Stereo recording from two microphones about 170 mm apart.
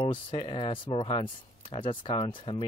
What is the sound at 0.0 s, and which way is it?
Speech, 30° left (ahead or behind).